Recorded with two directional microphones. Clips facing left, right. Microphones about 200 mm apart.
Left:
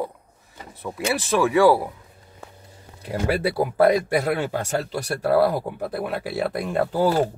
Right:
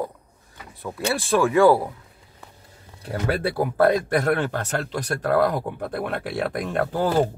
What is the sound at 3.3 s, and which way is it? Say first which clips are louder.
Speech: left 1 dB; 10° left (ahead or behind).